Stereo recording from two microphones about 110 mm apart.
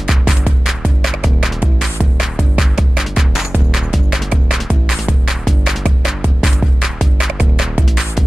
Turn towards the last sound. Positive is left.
turn(degrees=-5)  # may be behind; listen again after turning